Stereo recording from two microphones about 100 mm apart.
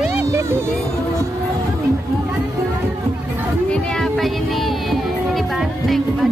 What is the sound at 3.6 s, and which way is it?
Music, 5° left (ahead or behind).